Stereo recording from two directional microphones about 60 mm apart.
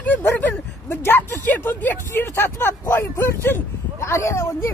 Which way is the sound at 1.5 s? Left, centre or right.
Left.